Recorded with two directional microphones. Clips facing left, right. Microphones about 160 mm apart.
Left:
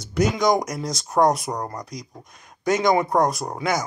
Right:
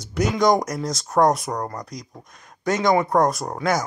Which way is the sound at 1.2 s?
Centre (ahead or behind).